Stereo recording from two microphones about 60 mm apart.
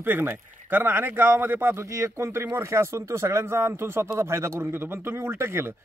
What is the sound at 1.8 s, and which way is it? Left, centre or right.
Speech, right.